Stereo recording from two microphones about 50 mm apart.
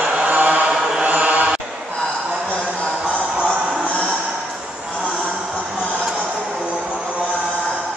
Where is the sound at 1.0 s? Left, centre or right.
Right.